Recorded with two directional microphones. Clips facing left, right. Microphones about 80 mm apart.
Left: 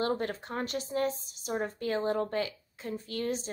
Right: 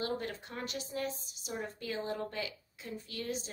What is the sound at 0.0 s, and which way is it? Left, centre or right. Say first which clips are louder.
A woman's voice: left 6 dB; left.